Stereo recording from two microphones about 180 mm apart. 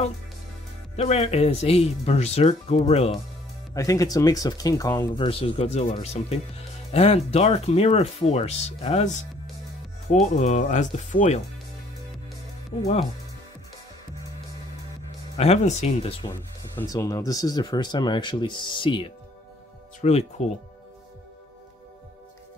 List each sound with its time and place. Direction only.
0.9 s speech: 35° left (ahead or behind)
3.7 s speech: 20° left (ahead or behind)
5.2 s speech: 30° left (ahead or behind)
15.3 s speech: 35° left (ahead or behind)
16.7 s speech: 15° left (ahead or behind); by 20.4 s 35° left (ahead or behind)